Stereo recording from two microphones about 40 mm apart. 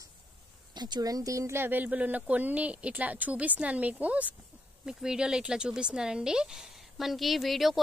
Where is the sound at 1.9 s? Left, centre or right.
Right.